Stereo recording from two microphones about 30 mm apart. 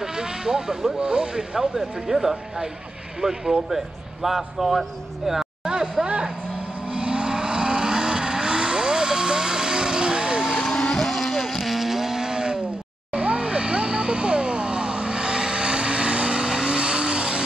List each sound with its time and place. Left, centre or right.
0.0 s vehicle: right
0.9 s speech: right
1.8 s speech: centre
5.6 s a sound: right
6.9 s vehicle: right
10.6 s vehicle: left
11.1 s vehicle: centre; by 12.5 s right
13.1 s vehicle: right